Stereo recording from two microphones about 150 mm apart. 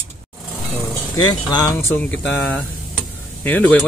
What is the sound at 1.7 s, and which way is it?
Speech, 15° left (ahead or behind).